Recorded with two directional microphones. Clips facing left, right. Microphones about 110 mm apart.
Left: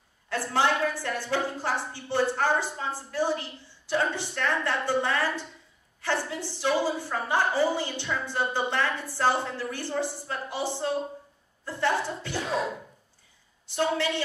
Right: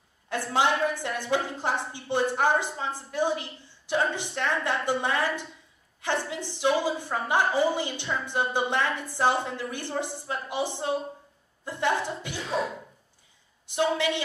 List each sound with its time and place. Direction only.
0.5 s a woman's voice: 15° right (ahead or behind)
13.7 s a woman's voice: 15° right (ahead or behind)